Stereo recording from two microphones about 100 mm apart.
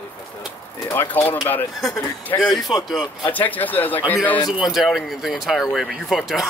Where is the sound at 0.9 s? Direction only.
20° left (ahead or behind).